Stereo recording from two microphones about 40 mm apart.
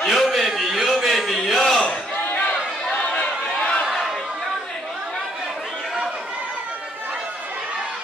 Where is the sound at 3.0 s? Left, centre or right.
Left.